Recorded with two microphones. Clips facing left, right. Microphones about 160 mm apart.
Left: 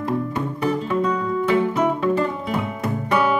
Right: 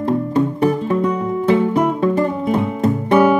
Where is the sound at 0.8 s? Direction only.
30° right (ahead or behind).